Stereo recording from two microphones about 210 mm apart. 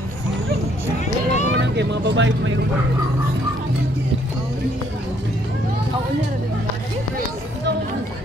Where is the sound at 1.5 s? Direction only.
55° right (ahead or behind).